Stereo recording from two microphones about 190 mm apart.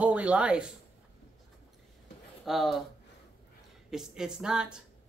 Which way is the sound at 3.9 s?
5° right (ahead or behind).